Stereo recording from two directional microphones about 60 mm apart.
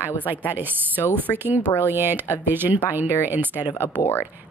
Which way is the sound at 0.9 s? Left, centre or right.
Left.